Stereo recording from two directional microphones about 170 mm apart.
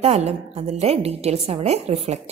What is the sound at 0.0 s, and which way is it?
Speech, 40° right (ahead or behind).